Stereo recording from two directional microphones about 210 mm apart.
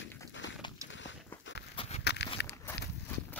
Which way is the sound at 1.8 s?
30° left (ahead or behind).